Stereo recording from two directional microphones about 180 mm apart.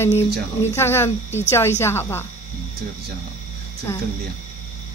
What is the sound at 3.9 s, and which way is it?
Speech, 15° left (ahead or behind).